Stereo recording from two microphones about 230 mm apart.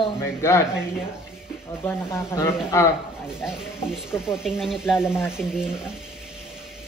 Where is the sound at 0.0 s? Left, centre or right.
Centre.